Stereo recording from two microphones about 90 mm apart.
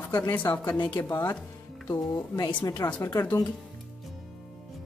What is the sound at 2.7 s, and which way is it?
Speech, 55° left (ahead or behind).